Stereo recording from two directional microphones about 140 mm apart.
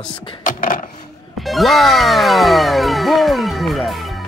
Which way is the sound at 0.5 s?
75° left (ahead or behind).